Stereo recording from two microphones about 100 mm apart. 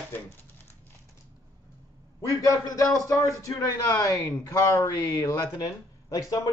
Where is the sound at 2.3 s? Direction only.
35° left (ahead or behind).